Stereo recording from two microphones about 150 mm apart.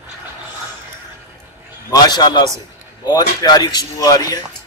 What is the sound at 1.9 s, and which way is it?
Speech, 25° left (ahead or behind).